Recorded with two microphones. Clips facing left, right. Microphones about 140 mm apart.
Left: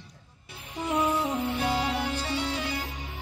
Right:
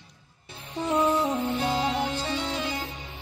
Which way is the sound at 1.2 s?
25° right (ahead or behind).